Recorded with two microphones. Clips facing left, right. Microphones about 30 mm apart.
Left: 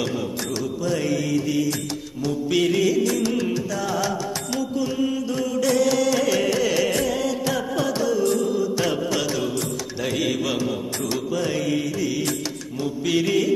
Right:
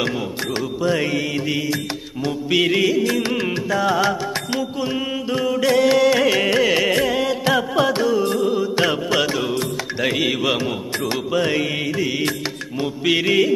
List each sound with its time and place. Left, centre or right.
0.0 s mantra: right
2.6 s music: right